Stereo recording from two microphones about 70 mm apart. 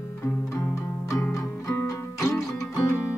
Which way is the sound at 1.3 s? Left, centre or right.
Left.